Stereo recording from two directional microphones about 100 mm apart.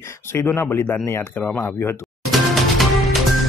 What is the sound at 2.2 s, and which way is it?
Music, centre (ahead or behind).